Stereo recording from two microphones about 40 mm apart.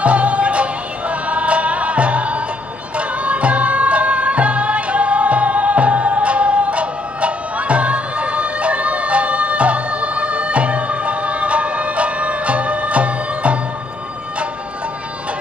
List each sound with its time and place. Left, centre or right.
0.0 s music: right